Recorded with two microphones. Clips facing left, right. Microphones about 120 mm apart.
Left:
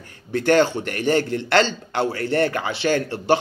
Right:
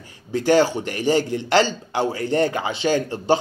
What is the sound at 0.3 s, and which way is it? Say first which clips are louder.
A man's voice: even; 10° right (ahead or behind).